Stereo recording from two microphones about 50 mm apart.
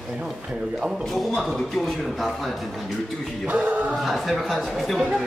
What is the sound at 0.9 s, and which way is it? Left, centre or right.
Speech, centre.